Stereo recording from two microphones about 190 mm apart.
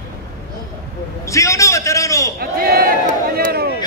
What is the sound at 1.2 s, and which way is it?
A man's voice, 15° left (ahead or behind).